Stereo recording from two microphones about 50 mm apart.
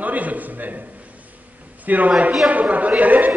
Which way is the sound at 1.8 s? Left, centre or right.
Right.